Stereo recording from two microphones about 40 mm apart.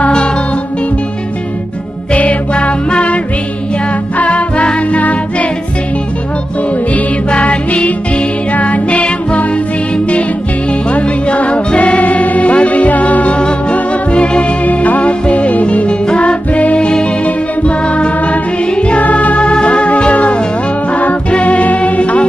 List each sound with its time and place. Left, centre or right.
2.1 s music: left
4.2 s music: left
6.9 s music: left
10.9 s music: left
14.7 s music: left
19.5 s organ: left
20.9 s music: left